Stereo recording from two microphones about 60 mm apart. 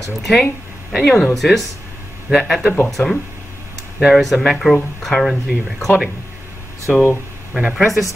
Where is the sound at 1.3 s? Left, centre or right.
Centre.